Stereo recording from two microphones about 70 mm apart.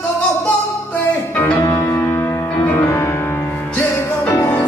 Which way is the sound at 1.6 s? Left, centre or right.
Left.